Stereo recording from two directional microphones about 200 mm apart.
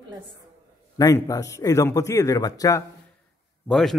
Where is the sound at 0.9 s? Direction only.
15° left (ahead or behind).